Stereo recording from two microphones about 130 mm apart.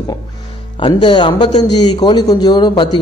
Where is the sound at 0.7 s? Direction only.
40° left (ahead or behind).